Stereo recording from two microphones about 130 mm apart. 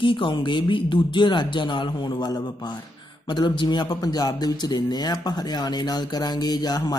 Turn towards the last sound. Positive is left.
turn(degrees=30)  # may be behind; listen again after turning